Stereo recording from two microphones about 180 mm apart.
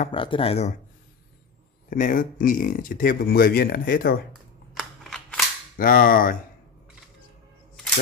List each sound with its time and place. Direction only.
0.1 s speech: 30° left (ahead or behind)
1.9 s speech: 50° left (ahead or behind)
4.7 s scissors: 5° left (ahead or behind)
5.8 s speech: 50° left (ahead or behind)